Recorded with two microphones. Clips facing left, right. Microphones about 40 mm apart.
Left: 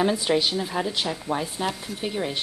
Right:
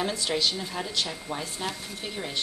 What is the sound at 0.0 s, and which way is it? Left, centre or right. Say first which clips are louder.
Speech: left 5 dB; centre.